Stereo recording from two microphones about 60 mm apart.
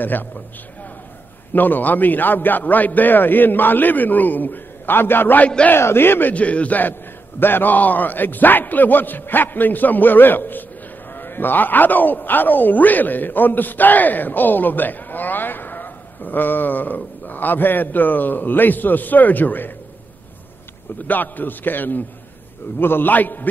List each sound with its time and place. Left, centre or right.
0.0 s a man's voice: left
1.5 s a man's voice: left
6.3 s a man's voice: left
21.1 s a man's voice: left